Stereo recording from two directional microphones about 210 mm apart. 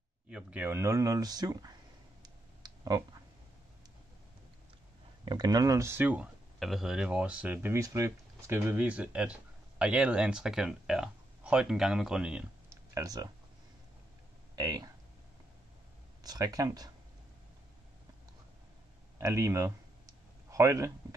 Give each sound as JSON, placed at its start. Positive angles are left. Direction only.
{"t": 0.3, "sound": "speech", "side_deg": -5}
{"t": 2.2, "sound": "clicking", "side_deg": -20}
{"t": 5.2, "sound": "speech", "side_deg": -20}
{"t": 14.5, "sound": "speech", "side_deg": -15}
{"t": 16.2, "sound": "speech", "side_deg": -20}
{"t": 19.1, "sound": "speech", "side_deg": -15}